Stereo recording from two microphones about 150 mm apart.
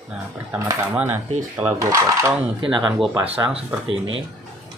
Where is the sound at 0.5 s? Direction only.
20° right (ahead or behind).